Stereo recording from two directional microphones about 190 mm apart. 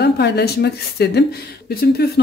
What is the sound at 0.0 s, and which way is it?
Speech, 60° left (ahead or behind).